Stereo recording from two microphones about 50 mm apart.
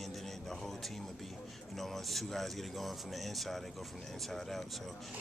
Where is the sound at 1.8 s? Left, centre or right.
Centre.